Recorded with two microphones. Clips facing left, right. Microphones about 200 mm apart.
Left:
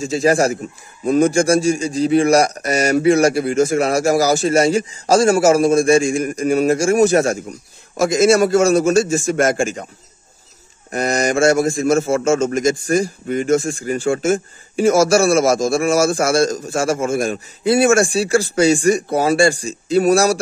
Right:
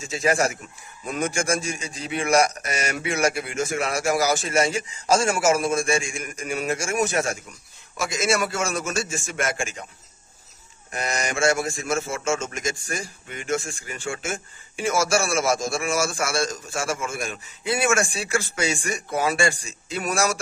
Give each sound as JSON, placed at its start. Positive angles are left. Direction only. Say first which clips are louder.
{"t": 0.0, "sound": "a man's voice", "louder": "left 7 dB", "side_deg": 35}
{"t": 10.9, "sound": "a man's voice", "louder": "left 10 dB", "side_deg": 40}